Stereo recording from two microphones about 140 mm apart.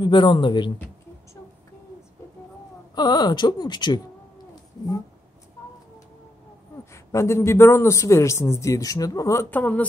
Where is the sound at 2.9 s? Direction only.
30° left (ahead or behind).